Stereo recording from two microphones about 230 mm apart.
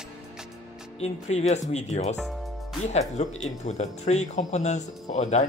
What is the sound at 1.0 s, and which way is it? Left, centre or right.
Speech, left.